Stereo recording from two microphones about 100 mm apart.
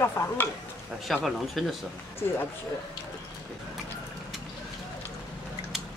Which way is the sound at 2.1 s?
25° left (ahead or behind).